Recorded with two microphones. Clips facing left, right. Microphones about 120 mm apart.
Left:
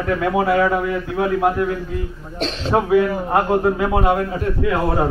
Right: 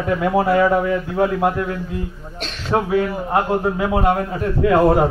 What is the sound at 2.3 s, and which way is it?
Speech, 30° left (ahead or behind).